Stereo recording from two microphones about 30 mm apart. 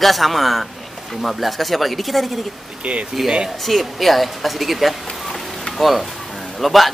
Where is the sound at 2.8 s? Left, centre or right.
Right.